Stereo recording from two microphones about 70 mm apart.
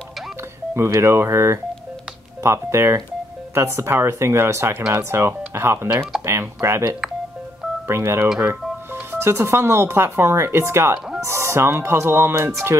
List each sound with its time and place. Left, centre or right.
0.7 s speech: right